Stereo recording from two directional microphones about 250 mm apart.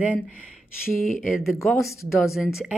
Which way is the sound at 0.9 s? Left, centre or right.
Left.